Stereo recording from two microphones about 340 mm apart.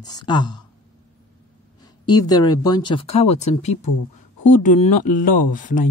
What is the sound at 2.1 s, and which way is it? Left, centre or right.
Speech, centre.